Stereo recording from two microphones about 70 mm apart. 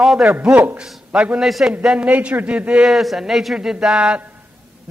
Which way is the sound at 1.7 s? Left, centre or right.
Centre.